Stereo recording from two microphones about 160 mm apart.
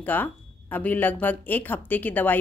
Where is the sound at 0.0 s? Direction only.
10° left (ahead or behind).